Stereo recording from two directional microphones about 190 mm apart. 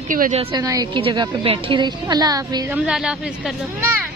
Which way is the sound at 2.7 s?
5° right (ahead or behind).